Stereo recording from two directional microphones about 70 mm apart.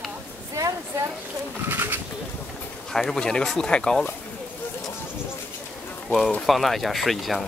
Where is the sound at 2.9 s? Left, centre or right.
Centre.